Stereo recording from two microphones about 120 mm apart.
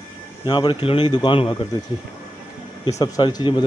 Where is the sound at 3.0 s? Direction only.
35° left (ahead or behind).